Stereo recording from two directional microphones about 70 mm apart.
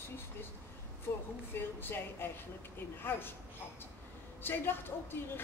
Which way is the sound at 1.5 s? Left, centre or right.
Left.